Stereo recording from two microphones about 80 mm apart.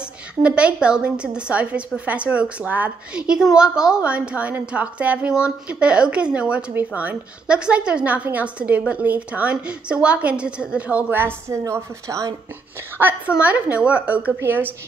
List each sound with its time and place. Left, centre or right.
0.4 s a woman's voice: centre; by 12.3 s right
12.9 s a woman's voice: right